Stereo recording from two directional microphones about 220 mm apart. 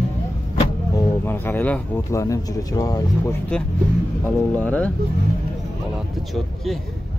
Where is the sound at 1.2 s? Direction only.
10° left (ahead or behind).